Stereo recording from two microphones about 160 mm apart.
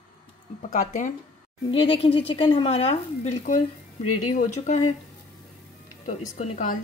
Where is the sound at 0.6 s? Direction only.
50° left (ahead or behind).